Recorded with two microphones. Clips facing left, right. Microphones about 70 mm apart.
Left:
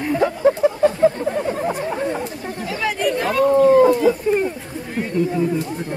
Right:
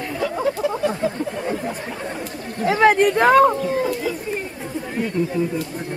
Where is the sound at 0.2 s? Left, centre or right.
Left.